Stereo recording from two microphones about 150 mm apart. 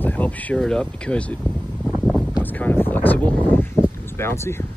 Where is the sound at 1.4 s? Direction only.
5° right (ahead or behind).